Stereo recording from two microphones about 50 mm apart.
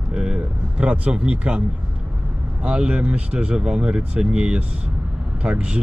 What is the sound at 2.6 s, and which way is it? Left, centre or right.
Speech, centre.